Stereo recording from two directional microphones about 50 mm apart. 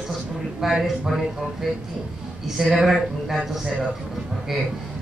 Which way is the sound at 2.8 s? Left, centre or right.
Centre.